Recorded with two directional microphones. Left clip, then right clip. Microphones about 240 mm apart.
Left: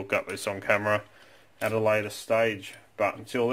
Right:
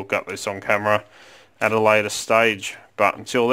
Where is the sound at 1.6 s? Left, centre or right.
Right.